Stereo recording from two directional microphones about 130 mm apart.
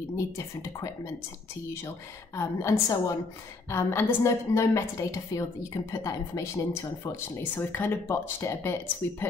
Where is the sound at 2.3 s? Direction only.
20° left (ahead or behind).